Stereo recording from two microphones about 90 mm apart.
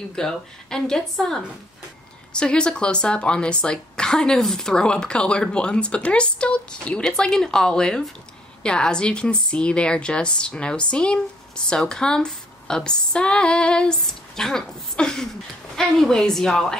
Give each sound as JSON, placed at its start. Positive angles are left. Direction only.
{"t": 0.1, "sound": "a woman's voice", "side_deg": 5}